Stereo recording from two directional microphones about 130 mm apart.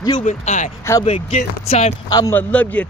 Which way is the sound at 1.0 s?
50° left (ahead or behind).